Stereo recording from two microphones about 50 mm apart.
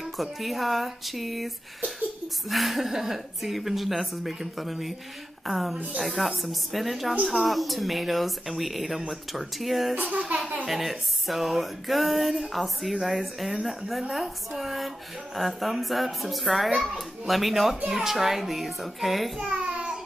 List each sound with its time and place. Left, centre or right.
0.0 s a woman's voice: centre
2.5 s a woman's voice: centre
10.1 s a child's voice: centre
10.7 s a woman's voice: centre
19.6 s child singing: centre